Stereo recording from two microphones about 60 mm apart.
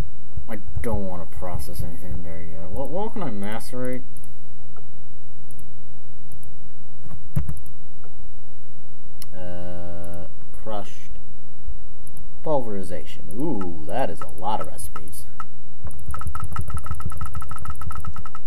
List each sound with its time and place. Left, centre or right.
0.5 s speech: centre
9.2 s tick-tock: centre
12.4 s speech: centre
16.3 s vehicle: right